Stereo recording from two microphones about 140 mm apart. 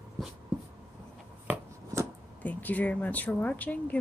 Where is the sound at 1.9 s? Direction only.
20° right (ahead or behind).